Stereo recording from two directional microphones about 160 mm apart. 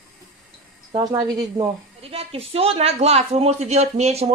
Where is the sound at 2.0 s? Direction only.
35° right (ahead or behind).